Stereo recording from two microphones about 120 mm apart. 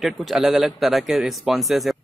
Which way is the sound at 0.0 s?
Centre (ahead or behind).